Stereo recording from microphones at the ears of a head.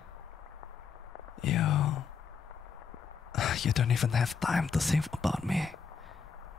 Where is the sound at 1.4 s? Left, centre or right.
Left.